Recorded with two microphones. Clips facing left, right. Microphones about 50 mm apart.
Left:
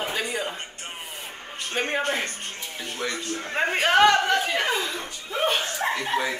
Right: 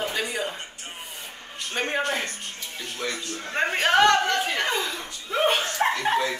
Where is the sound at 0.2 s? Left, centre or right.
Centre.